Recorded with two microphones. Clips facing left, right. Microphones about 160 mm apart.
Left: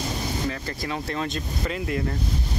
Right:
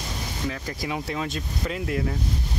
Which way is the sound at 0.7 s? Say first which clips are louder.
Even; 10° right (ahead or behind).